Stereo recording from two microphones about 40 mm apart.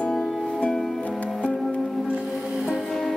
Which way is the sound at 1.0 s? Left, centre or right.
Left.